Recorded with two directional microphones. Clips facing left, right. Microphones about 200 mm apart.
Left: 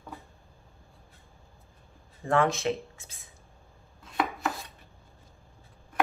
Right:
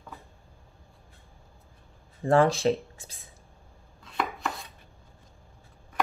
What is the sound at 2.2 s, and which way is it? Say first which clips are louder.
Speech: right 4 dB; 35° right (ahead or behind).